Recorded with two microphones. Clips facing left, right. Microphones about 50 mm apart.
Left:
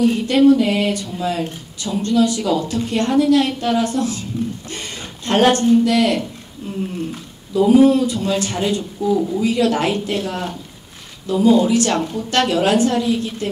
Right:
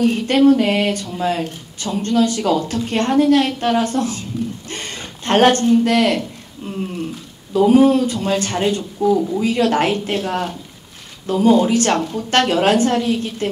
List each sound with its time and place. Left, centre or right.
0.0 s speech: right
0.5 s a sound: right
1.8 s speech: right
4.6 s a sound: right
5.7 s speech: right
7.5 s speech: right